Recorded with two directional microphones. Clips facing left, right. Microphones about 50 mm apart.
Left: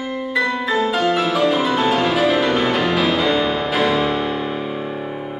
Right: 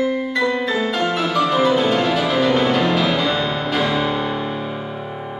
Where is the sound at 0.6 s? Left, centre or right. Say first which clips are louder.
Left 2 dB; centre.